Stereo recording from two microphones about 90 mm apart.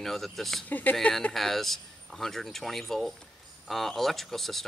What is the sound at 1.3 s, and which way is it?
Speech, centre (ahead or behind).